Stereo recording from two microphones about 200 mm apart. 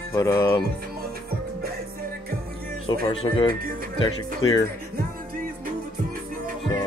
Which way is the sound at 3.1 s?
30° left (ahead or behind).